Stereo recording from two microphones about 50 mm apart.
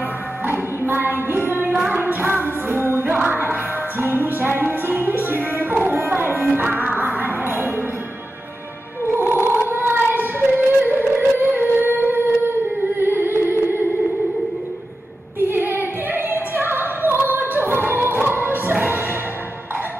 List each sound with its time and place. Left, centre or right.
0.5 s music: right
9.1 s child singing: right
10.9 s a sound: right
13.0 s music: right
15.5 s child singing: right
16.5 s opera: right